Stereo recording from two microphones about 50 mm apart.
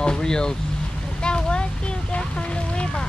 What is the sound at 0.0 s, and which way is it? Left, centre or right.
Speech, centre.